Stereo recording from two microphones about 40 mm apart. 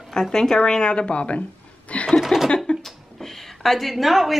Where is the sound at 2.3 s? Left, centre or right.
Centre.